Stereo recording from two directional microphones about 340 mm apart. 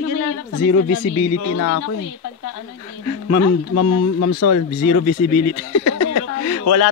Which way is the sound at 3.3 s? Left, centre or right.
Left.